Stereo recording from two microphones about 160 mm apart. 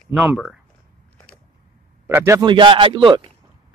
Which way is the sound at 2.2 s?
15° right (ahead or behind).